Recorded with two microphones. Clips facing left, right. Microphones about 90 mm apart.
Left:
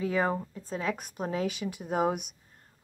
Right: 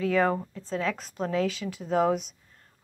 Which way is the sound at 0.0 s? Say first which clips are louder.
Right 4 dB; 20° left (ahead or behind).